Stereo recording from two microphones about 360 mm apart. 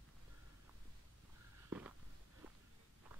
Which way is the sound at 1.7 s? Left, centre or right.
Centre.